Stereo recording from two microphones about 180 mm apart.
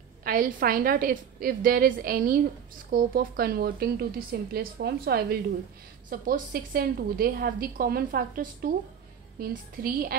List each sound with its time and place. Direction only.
0.2 s a woman's voice: 50° right (ahead or behind)